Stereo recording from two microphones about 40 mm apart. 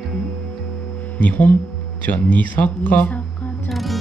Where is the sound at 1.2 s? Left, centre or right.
Left.